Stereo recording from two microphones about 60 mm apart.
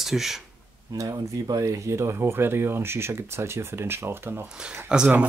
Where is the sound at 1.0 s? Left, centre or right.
Right.